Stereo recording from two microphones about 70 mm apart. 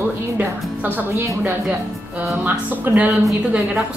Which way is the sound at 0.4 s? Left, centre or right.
Right.